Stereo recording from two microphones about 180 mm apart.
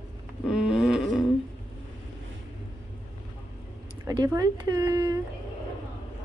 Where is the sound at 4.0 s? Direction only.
20° right (ahead or behind).